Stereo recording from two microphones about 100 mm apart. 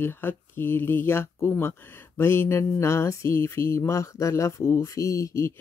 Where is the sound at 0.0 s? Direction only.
20° left (ahead or behind).